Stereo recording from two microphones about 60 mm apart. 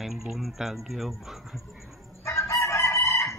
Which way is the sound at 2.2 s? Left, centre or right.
Left.